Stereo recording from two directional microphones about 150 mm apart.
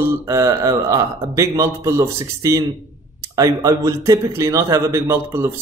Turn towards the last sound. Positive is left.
turn(degrees=-20)  # may be behind; listen again after turning